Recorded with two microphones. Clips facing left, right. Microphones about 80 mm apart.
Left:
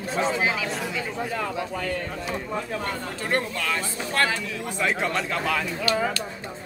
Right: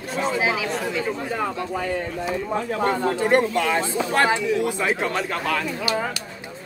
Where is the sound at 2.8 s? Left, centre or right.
Right.